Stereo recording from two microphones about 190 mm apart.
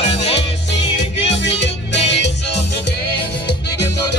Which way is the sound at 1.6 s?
70° left (ahead or behind).